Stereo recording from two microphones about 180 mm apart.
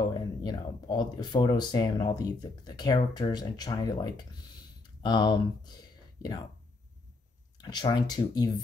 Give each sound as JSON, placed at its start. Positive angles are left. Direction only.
{"t": 0.1, "sound": "speech", "side_deg": 25}
{"t": 7.5, "sound": "speech", "side_deg": 20}